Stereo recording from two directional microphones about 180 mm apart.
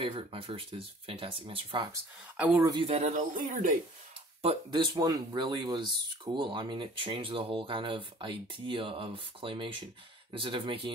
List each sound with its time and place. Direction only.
0.0 s speech: 30° right (ahead or behind)
2.3 s speech: 5° right (ahead or behind)
2.6 s speech: 30° right (ahead or behind); by 3.7 s 45° right (ahead or behind)
4.4 s speech: 30° right (ahead or behind)
4.9 s speech: 20° right (ahead or behind)